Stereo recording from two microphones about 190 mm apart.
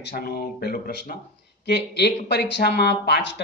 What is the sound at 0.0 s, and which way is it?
Speech, 55° left (ahead or behind).